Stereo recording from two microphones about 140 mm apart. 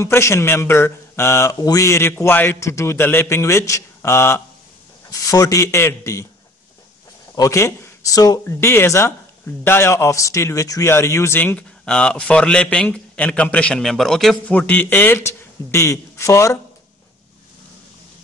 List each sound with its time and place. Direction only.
0.0 s speech: 20° left (ahead or behind)
7.3 s speech: 25° left (ahead or behind)